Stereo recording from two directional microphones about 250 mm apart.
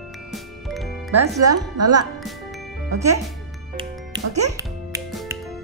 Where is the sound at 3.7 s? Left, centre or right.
Centre.